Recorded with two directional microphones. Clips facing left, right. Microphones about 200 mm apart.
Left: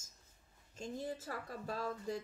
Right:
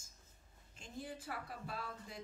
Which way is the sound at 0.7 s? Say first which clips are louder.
Left 6 dB; 40° left (ahead or behind).